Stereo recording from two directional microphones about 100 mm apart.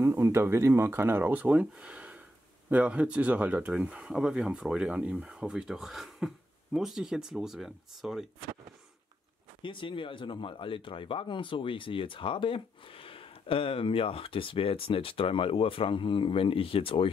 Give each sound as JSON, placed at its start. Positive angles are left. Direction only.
{"t": 0.0, "sound": "speech", "side_deg": -25}
{"t": 9.6, "sound": "speech", "side_deg": 55}